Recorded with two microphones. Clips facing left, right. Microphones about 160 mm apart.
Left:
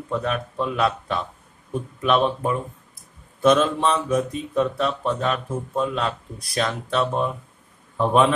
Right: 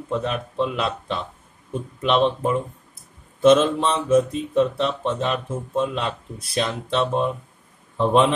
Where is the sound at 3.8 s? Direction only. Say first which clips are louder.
Right 3 dB; 25° right (ahead or behind).